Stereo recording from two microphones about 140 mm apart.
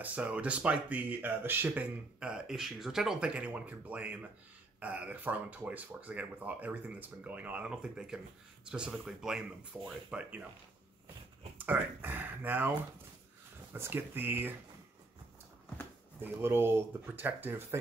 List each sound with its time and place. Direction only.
0.0 s speech: 10° right (ahead or behind)
11.5 s speech: 15° right (ahead or behind)
13.7 s speech: 15° right (ahead or behind)
16.2 s speech: 15° right (ahead or behind)